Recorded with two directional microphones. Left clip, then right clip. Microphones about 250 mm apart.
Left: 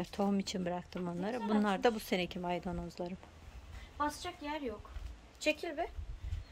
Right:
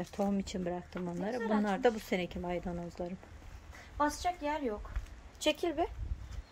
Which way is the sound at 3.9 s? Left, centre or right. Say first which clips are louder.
Right 5 dB; right.